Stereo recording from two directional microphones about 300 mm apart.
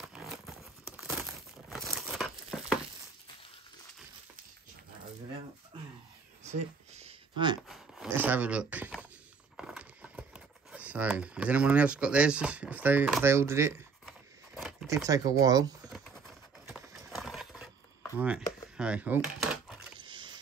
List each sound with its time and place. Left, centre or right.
0.0 s crumpling: centre
6.9 s a sound: centre
7.6 s speech: centre
14.0 s a sound: centre
16.6 s horse: centre
18.1 s coin: centre
20.0 s rowboat: centre